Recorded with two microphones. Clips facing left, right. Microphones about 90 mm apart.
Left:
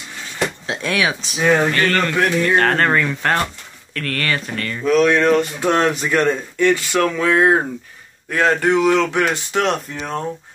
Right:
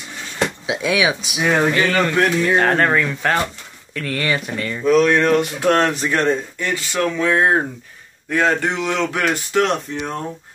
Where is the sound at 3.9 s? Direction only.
10° right (ahead or behind).